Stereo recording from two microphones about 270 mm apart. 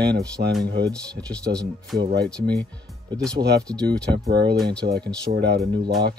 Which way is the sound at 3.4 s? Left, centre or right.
Right.